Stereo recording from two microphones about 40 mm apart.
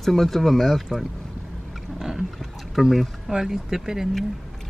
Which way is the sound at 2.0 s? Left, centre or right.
Centre.